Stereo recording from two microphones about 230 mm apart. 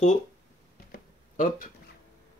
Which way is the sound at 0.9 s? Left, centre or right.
Left.